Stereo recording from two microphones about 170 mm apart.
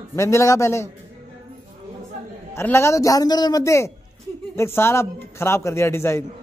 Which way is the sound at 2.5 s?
15° left (ahead or behind).